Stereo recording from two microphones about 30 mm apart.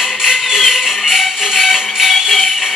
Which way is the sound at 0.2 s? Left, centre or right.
Centre.